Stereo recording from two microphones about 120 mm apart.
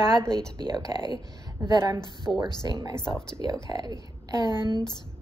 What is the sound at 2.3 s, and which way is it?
Speech, centre (ahead or behind).